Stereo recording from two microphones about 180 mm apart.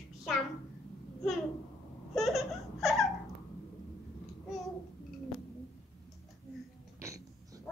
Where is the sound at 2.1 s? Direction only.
Centre (ahead or behind).